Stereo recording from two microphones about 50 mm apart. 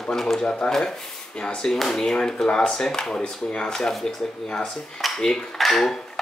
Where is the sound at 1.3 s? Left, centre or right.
Centre.